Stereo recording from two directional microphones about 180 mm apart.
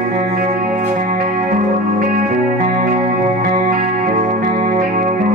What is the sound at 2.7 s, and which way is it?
Music, 45° right (ahead or behind).